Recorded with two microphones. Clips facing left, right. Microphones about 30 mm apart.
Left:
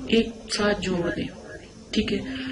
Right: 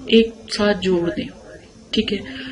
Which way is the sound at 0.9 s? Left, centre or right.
Right.